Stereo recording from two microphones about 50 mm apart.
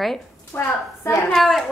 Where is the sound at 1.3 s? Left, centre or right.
Centre.